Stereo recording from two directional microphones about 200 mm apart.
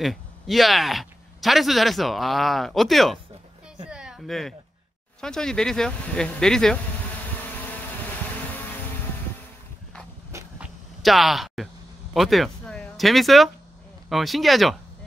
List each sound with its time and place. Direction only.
0.0 s speech: centre (ahead or behind)
3.8 s a sound: 5° right (ahead or behind)
5.2 s speech: 5° left (ahead or behind)
10.3 s vehicle: 15° right (ahead or behind)
11.0 s speech: centre (ahead or behind)